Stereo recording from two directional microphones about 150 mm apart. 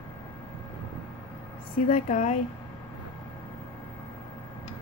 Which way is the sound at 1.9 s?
50° left (ahead or behind).